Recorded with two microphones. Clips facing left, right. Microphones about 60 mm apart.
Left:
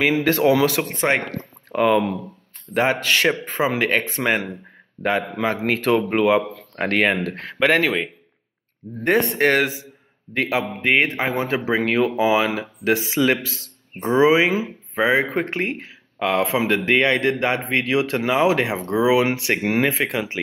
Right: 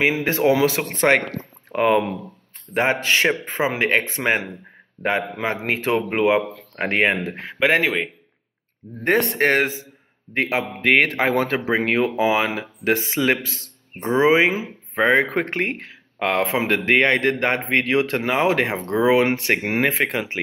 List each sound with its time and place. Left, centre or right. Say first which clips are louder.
0.2 s speech: left 1 dB; right
0.8 s speech: right 3 dB; right
1.4 s a sound: left 1 dB; right
2.7 s a man's voice: even; right
8.8 s speech: left 3 dB; centre
9.4 s speech: left 1 dB; right
10.8 s speech: right 3 dB; right
11.5 s speech: even; right
15.0 s speech: right 1 dB; right